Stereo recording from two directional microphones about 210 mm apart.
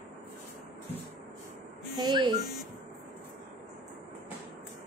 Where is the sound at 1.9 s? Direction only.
20° right (ahead or behind).